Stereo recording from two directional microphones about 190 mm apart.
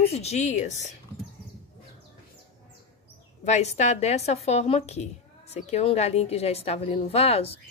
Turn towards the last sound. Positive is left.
turn(degrees=30)  # may be behind; listen again after turning